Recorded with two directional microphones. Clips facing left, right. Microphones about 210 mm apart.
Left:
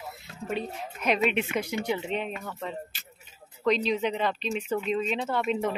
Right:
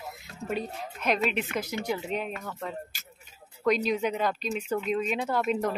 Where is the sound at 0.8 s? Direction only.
5° left (ahead or behind).